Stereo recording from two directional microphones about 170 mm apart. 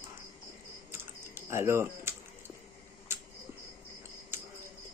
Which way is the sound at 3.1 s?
15° right (ahead or behind).